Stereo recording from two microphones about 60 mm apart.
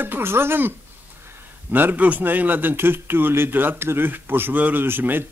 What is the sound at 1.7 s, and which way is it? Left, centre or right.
Speech, right.